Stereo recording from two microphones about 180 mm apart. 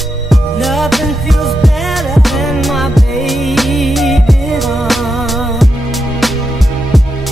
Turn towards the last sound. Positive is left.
turn(degrees=0)  # may be behind; listen again after turning